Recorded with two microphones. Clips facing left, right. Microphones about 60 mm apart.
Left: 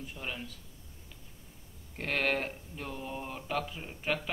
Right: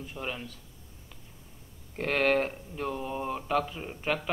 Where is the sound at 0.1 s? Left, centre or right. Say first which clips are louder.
Right 5 dB; centre.